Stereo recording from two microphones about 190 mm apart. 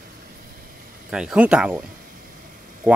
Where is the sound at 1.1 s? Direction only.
5° right (ahead or behind).